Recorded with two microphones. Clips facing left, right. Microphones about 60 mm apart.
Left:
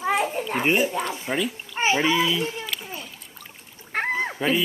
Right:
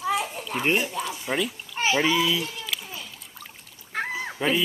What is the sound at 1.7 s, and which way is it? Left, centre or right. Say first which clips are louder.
Babbling: left 1 dB; left.